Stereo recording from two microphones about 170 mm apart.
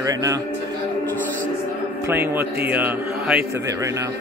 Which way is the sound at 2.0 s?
10° right (ahead or behind).